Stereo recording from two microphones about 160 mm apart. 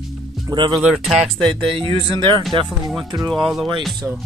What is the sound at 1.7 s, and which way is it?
Speech, 35° right (ahead or behind).